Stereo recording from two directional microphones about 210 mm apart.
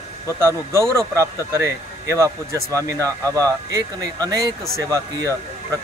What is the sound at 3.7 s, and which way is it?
Speech, 15° right (ahead or behind).